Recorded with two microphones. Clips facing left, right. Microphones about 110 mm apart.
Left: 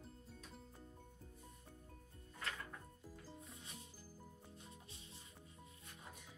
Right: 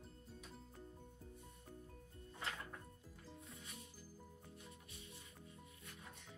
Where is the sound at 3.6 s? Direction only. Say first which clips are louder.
Even; 25° left (ahead or behind).